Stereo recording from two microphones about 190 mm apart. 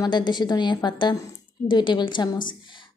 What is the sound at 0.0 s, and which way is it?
A woman's voice, 25° left (ahead or behind).